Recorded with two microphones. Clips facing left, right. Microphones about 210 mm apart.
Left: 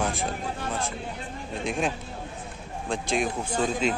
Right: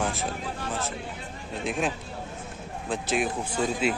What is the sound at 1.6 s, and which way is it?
A man's voice, centre (ahead or behind).